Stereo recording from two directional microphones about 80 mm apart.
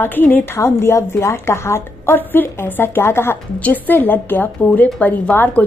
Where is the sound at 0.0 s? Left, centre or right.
Left.